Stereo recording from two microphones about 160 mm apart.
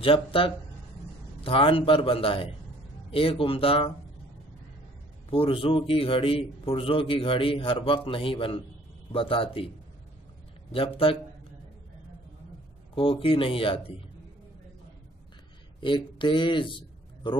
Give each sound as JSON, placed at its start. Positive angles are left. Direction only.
{"t": 0.0, "sound": "a man's voice", "side_deg": 35}
{"t": 5.3, "sound": "a man's voice", "side_deg": 35}
{"t": 12.9, "sound": "a man's voice", "side_deg": 35}
{"t": 15.8, "sound": "a man's voice", "side_deg": 30}